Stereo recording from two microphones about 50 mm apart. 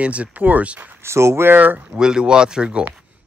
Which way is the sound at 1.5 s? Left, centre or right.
Right.